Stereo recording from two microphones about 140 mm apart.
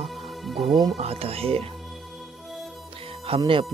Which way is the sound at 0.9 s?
45° right (ahead or behind).